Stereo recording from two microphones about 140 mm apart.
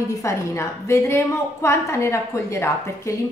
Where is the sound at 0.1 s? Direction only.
20° left (ahead or behind).